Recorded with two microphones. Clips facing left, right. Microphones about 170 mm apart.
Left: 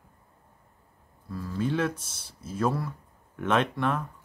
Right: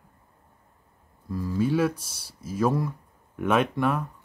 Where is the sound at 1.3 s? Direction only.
10° right (ahead or behind).